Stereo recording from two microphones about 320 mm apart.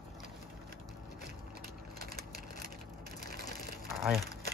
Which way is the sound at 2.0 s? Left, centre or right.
Right.